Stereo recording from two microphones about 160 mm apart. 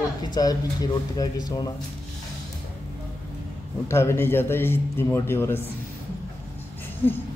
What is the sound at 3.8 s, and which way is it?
A man's voice, 15° left (ahead or behind).